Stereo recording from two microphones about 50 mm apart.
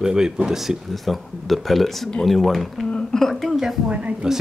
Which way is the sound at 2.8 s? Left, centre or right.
Centre.